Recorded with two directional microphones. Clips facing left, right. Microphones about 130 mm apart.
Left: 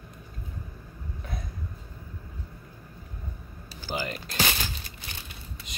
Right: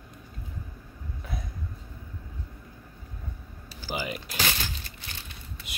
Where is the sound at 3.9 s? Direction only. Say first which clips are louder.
Even; 10° right (ahead or behind).